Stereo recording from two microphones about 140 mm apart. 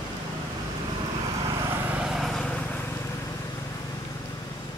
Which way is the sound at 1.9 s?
5° right (ahead or behind).